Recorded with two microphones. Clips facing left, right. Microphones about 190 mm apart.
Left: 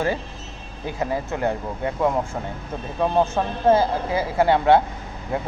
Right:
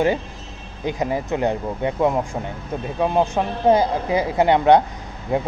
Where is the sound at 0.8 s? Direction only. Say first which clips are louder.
Right 3 dB; 20° right (ahead or behind).